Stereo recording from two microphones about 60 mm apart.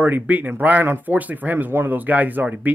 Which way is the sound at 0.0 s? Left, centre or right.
Right.